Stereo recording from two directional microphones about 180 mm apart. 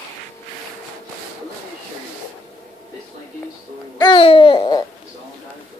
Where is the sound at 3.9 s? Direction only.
25° left (ahead or behind).